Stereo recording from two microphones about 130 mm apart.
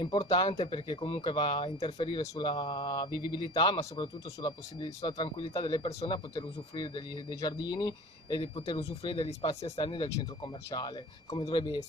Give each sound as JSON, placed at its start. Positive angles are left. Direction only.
{"t": 0.0, "sound": "speech", "side_deg": 50}